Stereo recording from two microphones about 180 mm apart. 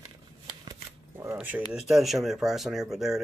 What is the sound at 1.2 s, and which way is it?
Speech, 10° right (ahead or behind).